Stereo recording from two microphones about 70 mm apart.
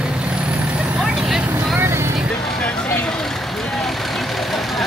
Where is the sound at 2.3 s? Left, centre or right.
Centre.